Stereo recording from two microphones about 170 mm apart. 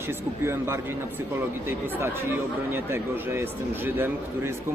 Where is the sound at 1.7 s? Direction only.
15° right (ahead or behind).